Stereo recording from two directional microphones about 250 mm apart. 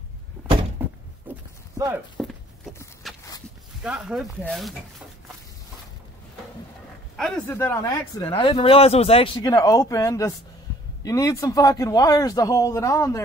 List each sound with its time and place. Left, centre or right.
0.8 s a sound: centre
1.3 s livestock: centre
2.1 s a sound: centre
3.0 s walk: centre
3.8 s speech: centre
7.2 s a man's voice: centre
8.3 s a man's voice: left